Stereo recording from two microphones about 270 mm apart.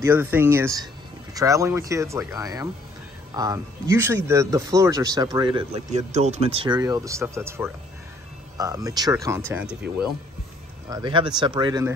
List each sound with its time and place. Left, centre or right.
0.0 s speech: centre
10.9 s speech: centre